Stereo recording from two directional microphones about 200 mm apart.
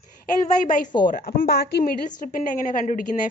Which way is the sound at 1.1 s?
50° left (ahead or behind).